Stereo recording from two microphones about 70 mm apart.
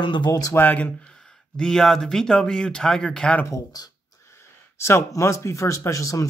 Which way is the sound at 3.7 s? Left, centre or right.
Left.